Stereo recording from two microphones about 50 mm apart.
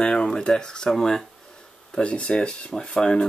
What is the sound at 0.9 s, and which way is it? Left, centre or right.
Speech, centre.